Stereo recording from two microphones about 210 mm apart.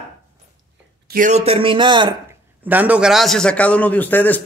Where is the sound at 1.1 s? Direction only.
35° right (ahead or behind); by 2.4 s 20° right (ahead or behind).